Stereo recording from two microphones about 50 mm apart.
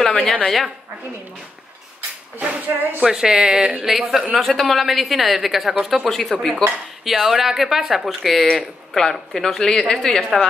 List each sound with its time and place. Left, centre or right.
0.0 s a sound: centre
2.4 s speech: right
3.0 s speech: centre
3.8 s a woman's voice: centre
6.6 s speech: centre
7.1 s a woman's voice: centre